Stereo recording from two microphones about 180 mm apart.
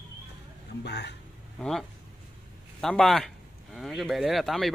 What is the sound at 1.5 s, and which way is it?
A man's voice, centre (ahead or behind).